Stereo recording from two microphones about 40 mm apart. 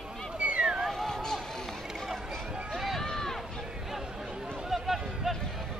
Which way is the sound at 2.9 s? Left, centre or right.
Centre.